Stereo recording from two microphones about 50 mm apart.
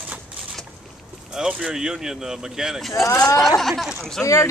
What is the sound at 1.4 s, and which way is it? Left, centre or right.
Speech, centre.